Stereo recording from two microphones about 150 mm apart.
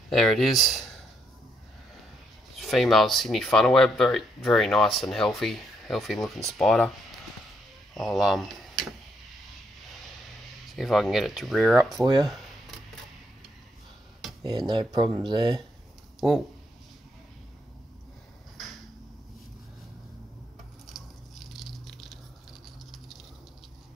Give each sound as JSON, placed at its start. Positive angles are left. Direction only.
{"t": 0.1, "sound": "speech", "side_deg": 0}
{"t": 2.5, "sound": "speech", "side_deg": 0}
{"t": 10.7, "sound": "speech", "side_deg": 0}
{"t": 11.9, "sound": "speech", "side_deg": -25}
{"t": 14.7, "sound": "speech", "side_deg": -30}
{"t": 20.8, "sound": "patter", "side_deg": 0}